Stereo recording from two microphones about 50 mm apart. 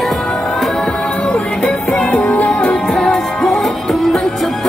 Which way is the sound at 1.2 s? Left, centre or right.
Centre.